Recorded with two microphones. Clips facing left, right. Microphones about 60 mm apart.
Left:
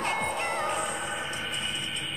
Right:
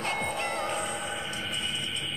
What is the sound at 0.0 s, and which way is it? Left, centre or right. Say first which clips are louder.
Music: left 2 dB; centre.